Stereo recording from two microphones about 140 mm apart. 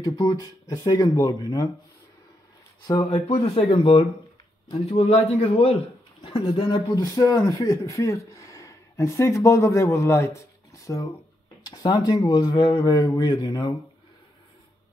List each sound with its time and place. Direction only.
0.0 s speech: 25° left (ahead or behind)
2.9 s speech: 30° left (ahead or behind)
3.3 s speech: 45° left (ahead or behind); by 10.4 s 20° left (ahead or behind)
11.6 s speech: 30° left (ahead or behind)